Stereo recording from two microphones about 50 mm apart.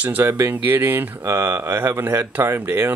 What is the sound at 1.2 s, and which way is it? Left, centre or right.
Speech, right.